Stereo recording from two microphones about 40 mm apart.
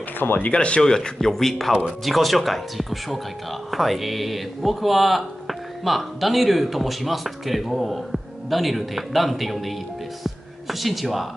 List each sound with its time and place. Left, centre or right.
0.5 s speech: left
0.8 s speech: centre
1.1 s speech: centre
10.2 s music: centre